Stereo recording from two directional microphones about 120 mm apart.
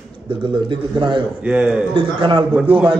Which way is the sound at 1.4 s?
5° right (ahead or behind).